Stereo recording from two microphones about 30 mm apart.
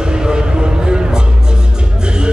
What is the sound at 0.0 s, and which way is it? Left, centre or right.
Music, right.